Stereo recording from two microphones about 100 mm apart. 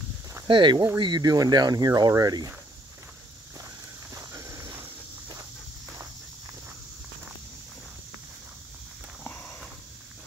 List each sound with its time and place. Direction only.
0.5 s speech: 50° right (ahead or behind)
3.5 s a sound: 30° right (ahead or behind)
9.2 s walk: 10° left (ahead or behind)